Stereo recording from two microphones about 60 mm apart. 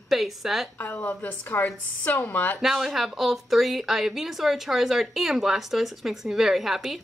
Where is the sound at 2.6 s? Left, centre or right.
Centre.